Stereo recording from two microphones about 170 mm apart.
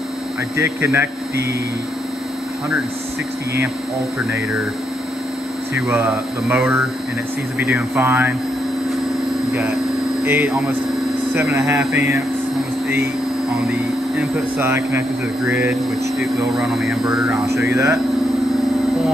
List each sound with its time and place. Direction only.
0.6 s speech: 15° right (ahead or behind)
4.2 s speech: 5° right (ahead or behind)
5.8 s speech: 5° right (ahead or behind)
10.2 s speech: 10° right (ahead or behind)
13.7 s speech: 10° right (ahead or behind)
17.6 s speech: 15° right (ahead or behind)